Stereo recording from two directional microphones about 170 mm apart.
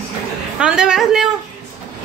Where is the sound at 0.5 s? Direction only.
5° right (ahead or behind).